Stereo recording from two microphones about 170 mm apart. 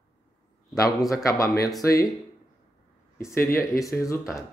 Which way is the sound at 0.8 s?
20° left (ahead or behind).